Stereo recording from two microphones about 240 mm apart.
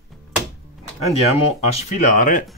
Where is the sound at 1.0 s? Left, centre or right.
Left.